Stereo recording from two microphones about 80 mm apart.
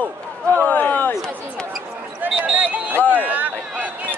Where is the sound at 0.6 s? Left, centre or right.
Left.